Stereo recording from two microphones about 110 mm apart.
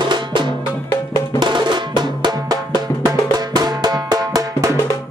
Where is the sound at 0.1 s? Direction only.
45° right (ahead or behind).